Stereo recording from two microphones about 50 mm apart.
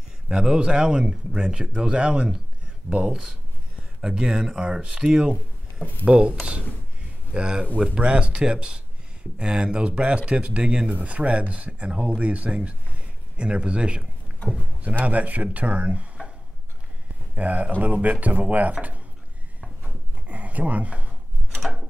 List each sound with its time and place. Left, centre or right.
0.3 s speech: centre
7.3 s speech: centre
10.9 s speech: right
17.4 s speech: right
20.2 s a sound: right
21.5 s wood: centre